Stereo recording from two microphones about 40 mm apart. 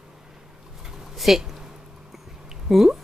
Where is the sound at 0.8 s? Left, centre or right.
Centre.